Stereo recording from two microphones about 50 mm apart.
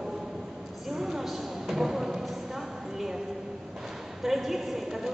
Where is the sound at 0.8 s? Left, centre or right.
Centre.